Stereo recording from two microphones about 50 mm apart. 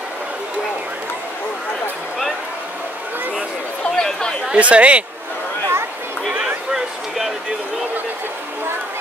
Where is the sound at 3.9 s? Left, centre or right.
Centre.